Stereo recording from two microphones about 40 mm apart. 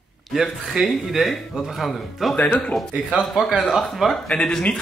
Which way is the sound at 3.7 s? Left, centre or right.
Centre.